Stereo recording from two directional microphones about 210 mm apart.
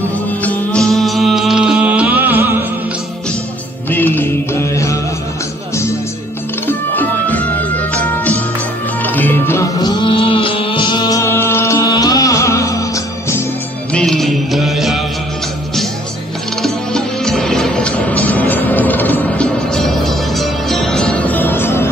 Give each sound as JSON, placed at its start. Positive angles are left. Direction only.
{"t": 0.4, "sound": "music", "side_deg": 5}
{"t": 3.9, "sound": "music", "side_deg": 10}
{"t": 6.7, "sound": "music", "side_deg": 10}
{"t": 13.9, "sound": "music", "side_deg": 0}
{"t": 16.6, "sound": "music", "side_deg": 0}